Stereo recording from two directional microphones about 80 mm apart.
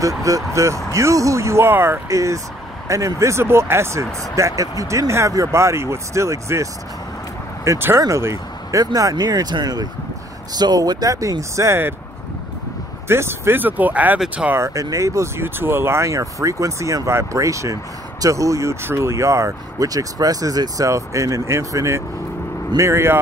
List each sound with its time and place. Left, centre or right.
0.0 s speech: right
2.0 s speech: right
13.1 s speech: right
14.5 s speech: right